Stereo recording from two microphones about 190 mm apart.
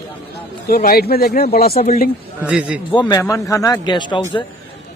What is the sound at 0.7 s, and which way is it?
Speech, 50° left (ahead or behind).